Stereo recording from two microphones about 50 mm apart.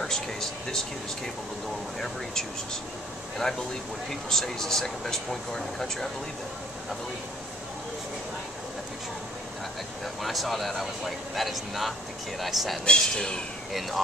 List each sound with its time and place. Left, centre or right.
0.0 s speech: centre
2.0 s speech: centre
4.1 s speech: centre
10.2 s speech: centre
12.8 s speech: centre